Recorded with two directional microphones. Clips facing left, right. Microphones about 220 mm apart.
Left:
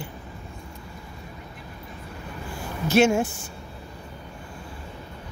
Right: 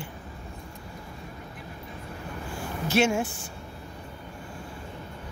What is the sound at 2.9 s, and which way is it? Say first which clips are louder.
Speech: left 5 dB; 40° left (ahead or behind).